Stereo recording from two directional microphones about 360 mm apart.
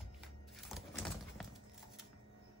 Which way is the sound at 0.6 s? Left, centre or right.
Centre.